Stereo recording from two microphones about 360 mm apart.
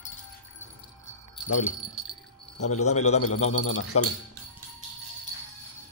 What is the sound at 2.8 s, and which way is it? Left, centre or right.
Speech, centre.